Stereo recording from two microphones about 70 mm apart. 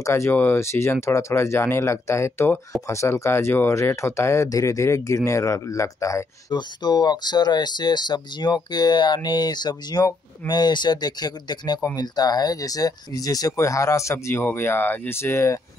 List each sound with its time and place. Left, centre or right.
0.0 s speech: left
6.5 s speech: left
11.9 s speech: left